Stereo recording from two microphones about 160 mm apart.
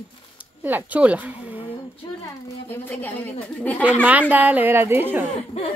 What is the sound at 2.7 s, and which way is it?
A woman's voice, 10° left (ahead or behind).